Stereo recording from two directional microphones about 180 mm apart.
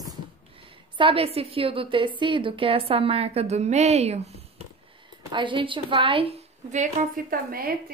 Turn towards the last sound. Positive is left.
turn(degrees=-55)  # may be behind; listen again after turning